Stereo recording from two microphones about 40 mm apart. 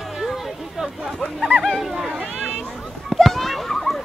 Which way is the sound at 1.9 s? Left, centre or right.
Centre.